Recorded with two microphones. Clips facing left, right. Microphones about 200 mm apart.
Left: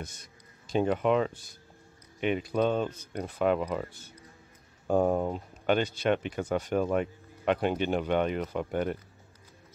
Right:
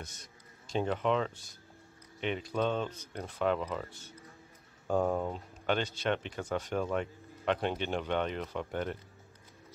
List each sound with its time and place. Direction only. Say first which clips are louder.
0.0 s a sound: left 5 dB; 55° left (ahead or behind)
0.7 s speech: left 5 dB; 10° left (ahead or behind)
4.8 s speech: left 4 dB; 15° left (ahead or behind)